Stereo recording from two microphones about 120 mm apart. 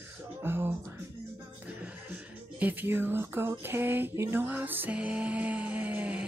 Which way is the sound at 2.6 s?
15° right (ahead or behind).